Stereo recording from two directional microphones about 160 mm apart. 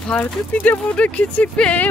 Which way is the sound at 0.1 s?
10° left (ahead or behind).